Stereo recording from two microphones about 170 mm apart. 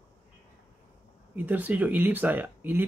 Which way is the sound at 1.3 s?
10° right (ahead or behind).